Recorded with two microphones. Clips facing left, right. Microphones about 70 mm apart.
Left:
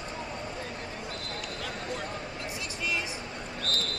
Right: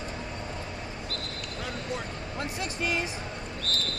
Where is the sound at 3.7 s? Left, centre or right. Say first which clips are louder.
Even; right.